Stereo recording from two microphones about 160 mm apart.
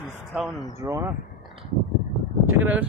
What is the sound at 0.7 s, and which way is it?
Speech, 20° right (ahead or behind).